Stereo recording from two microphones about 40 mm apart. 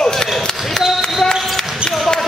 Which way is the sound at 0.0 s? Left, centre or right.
Centre.